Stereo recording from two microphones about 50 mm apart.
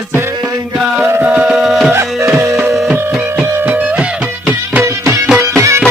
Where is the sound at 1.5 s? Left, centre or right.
Centre.